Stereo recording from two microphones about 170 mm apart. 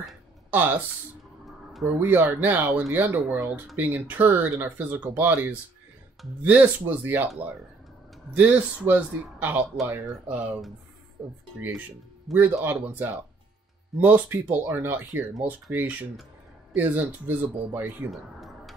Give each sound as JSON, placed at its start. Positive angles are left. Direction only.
{"t": 0.5, "sound": "speech", "side_deg": -10}
{"t": 1.7, "sound": "a sound", "side_deg": 0}
{"t": 2.0, "sound": "speech", "side_deg": -10}
{"t": 12.3, "sound": "speech", "side_deg": -5}